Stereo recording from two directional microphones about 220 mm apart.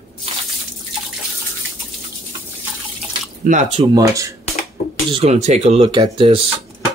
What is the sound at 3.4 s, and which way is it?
Speech, 35° right (ahead or behind).